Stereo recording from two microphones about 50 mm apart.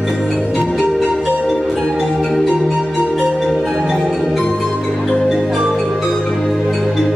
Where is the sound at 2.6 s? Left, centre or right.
Centre.